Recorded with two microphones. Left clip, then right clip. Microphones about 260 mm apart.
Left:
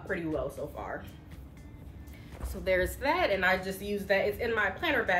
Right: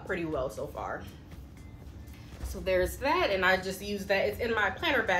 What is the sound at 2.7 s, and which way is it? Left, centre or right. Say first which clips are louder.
Speech: even; centre.